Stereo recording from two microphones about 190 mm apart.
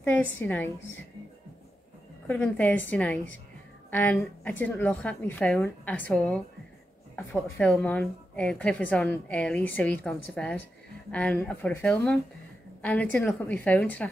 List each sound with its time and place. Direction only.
0.0 s a woman's voice: 10° left (ahead or behind)
2.2 s a woman's voice: 10° left (ahead or behind)